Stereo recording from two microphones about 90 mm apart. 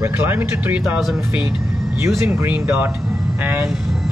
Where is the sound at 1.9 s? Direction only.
30° right (ahead or behind).